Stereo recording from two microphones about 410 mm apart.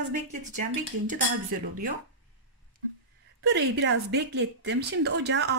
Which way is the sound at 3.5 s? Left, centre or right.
Right.